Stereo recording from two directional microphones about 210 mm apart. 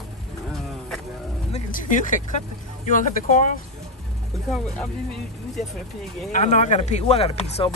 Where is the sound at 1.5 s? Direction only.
35° left (ahead or behind).